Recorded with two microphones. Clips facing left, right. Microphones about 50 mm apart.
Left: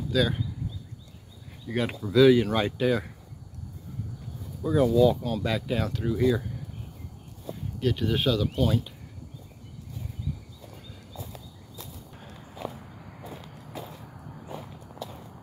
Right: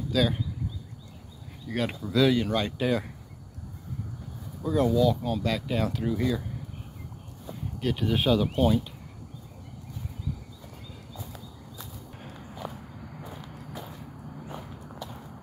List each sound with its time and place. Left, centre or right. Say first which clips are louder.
0.1 s speech: even; centre
1.7 s speech: left 1 dB; centre
2.8 s speech: left 2 dB; centre
4.6 s speech: left 2 dB; centre
7.8 s speech: left 1 dB; centre